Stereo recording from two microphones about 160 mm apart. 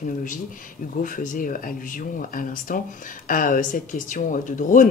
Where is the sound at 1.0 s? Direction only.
55° left (ahead or behind).